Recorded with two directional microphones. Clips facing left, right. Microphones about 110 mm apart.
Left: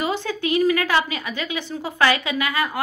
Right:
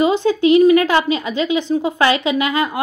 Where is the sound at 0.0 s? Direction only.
15° right (ahead or behind).